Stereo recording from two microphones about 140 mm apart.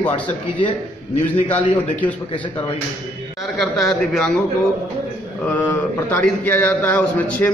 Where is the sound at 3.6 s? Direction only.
Centre (ahead or behind).